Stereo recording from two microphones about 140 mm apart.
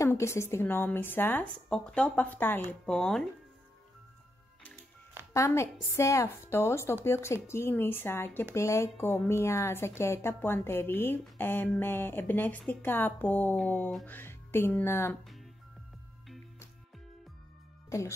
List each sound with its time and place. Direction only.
0.0 s a woman's voice: 20° left (ahead or behind)
2.9 s speech: 5° left (ahead or behind)
5.3 s a woman's voice: 20° left (ahead or behind)
17.8 s music: 20° left (ahead or behind)